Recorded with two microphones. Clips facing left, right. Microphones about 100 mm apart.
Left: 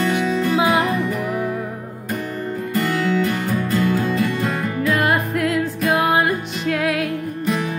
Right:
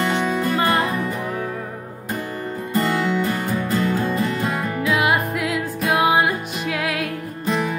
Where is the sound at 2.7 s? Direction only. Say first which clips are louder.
Even; 35° right (ahead or behind).